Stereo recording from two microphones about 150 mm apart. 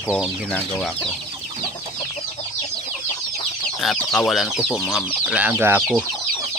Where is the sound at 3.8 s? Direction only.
5° left (ahead or behind).